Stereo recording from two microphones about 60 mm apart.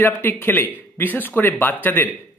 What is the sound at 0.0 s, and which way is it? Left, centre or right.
Speech, left.